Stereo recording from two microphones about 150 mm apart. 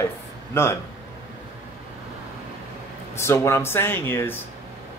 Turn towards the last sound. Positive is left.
turn(degrees=15)  # may be behind; listen again after turning